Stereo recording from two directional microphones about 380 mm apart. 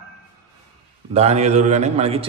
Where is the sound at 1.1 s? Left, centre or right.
Centre.